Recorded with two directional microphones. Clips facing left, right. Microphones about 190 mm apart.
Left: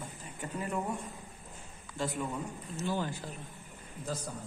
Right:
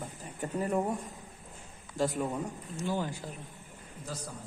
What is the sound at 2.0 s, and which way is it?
Speech, 40° right (ahead or behind).